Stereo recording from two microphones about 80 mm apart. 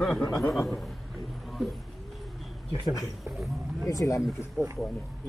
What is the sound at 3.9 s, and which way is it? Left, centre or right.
Speech, left.